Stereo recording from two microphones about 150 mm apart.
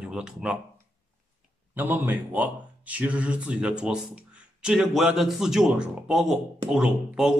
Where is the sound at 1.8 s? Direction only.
10° right (ahead or behind).